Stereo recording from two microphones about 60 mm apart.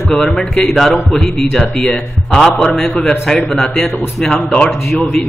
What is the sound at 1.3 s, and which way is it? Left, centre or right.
A man's voice, centre.